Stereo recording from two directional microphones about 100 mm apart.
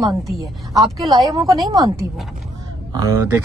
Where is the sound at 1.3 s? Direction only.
35° right (ahead or behind).